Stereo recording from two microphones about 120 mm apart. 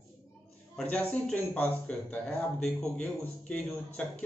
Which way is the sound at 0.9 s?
10° left (ahead or behind).